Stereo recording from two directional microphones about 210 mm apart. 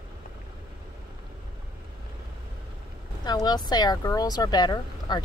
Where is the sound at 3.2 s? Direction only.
20° left (ahead or behind).